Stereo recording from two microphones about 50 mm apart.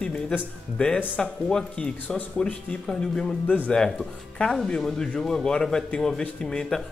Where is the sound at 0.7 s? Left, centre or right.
Left.